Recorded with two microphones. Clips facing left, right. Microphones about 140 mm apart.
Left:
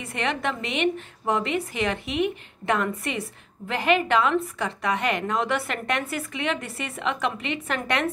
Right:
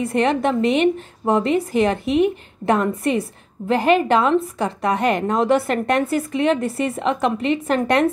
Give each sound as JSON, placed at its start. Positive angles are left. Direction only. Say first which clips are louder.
{"t": 0.0, "sound": "a woman's voice", "louder": "right 9 dB", "side_deg": -40}